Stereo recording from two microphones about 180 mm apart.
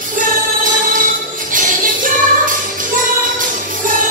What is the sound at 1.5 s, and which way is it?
Music, 50° right (ahead or behind).